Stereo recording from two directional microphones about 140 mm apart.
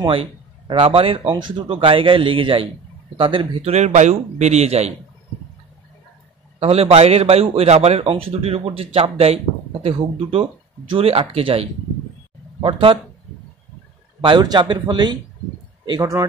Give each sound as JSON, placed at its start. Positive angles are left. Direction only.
{"t": 0.0, "sound": "speech", "side_deg": -35}
{"t": 3.7, "sound": "a man's voice", "side_deg": -55}
{"t": 6.6, "sound": "a man's voice", "side_deg": -45}
{"t": 10.9, "sound": "a man's voice", "side_deg": -40}
{"t": 14.2, "sound": "speech", "side_deg": -30}